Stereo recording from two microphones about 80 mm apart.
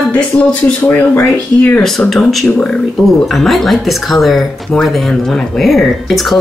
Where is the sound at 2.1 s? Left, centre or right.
Centre.